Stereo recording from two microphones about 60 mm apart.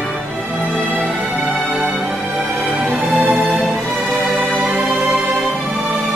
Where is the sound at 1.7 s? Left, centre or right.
Centre.